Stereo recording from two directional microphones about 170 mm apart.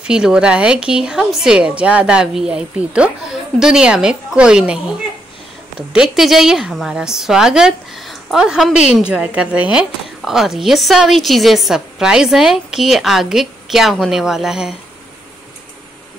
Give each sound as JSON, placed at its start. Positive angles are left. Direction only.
{"t": 0.0, "sound": "a woman's voice", "side_deg": -5}
{"t": 5.9, "sound": "a woman's voice", "side_deg": 0}